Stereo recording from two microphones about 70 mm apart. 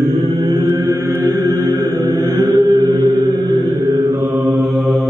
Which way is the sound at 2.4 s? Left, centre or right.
Right.